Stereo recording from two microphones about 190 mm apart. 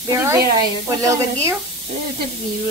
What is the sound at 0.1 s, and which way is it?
Speech, 15° right (ahead or behind).